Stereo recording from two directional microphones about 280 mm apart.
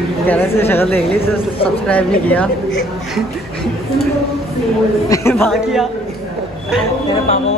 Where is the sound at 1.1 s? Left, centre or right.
Centre.